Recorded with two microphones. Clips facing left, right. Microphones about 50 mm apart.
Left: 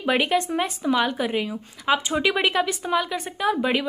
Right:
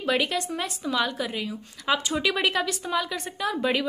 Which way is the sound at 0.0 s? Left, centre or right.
Left.